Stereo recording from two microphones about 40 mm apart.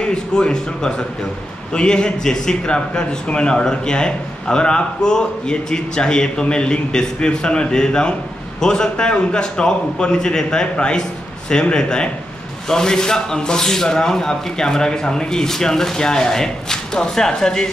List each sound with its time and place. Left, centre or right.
0.0 s a man's voice: left